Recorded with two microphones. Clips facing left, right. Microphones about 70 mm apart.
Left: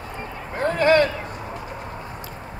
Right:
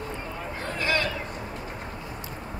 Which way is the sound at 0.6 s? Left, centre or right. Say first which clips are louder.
Left 11 dB; left.